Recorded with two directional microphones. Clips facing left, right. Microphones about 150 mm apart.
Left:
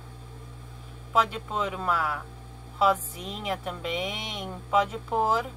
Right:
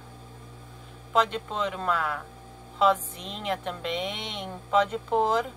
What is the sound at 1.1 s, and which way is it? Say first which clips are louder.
A woman's voice: right 1 dB; 5° left (ahead or behind).